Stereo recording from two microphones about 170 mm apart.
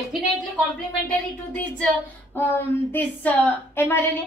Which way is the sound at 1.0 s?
5° left (ahead or behind).